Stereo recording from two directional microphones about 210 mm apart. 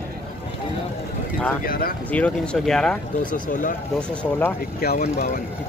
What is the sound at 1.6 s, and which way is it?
Speech, 45° left (ahead or behind).